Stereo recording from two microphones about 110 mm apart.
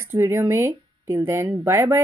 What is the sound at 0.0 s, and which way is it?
Speech, 25° right (ahead or behind).